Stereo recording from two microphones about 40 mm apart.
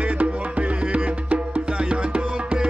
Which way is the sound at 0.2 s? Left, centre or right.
Right.